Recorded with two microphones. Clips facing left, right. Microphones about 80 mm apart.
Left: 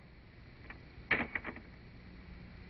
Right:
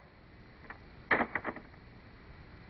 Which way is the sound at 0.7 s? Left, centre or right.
Right.